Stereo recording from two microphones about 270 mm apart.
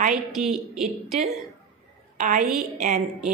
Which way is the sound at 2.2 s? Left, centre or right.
Right.